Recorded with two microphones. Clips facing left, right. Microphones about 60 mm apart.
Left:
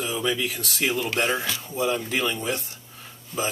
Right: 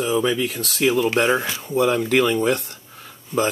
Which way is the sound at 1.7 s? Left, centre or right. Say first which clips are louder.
Right 8 dB; right.